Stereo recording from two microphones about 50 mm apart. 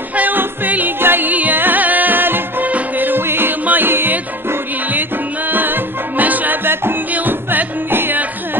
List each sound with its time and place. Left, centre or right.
0.1 s music: right
7.1 s music: right